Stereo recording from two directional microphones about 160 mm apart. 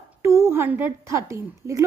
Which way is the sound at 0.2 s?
15° right (ahead or behind).